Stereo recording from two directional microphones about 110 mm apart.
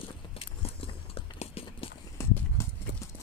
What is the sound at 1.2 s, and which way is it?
Clip-clop, 60° left (ahead or behind).